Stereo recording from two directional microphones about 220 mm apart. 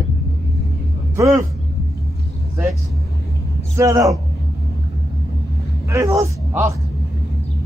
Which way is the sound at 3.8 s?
15° right (ahead or behind).